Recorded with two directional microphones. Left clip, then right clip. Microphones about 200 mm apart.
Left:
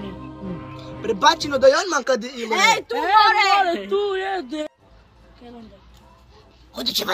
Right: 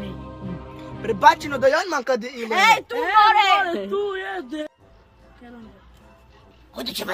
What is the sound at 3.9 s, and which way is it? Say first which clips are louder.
Speech: left 3 dB; 5° left (ahead or behind).